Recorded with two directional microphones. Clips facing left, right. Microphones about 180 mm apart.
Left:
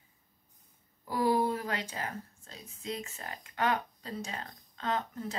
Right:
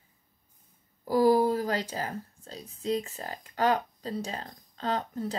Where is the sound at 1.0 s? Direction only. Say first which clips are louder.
Right 6 dB; 35° right (ahead or behind).